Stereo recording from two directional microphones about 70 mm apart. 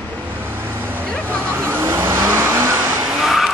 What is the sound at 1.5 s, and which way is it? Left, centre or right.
Vehicle, right.